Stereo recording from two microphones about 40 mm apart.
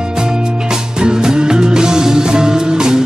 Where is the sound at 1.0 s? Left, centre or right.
Centre.